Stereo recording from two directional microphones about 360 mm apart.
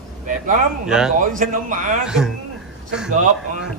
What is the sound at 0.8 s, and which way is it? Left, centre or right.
Speech, centre.